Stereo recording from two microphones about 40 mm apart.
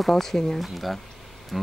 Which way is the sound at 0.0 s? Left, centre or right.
Centre.